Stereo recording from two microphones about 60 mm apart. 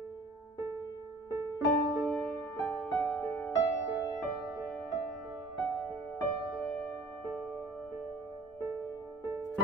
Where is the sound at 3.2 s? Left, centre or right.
Left.